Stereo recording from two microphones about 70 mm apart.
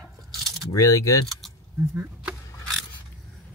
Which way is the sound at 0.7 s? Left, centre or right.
Left.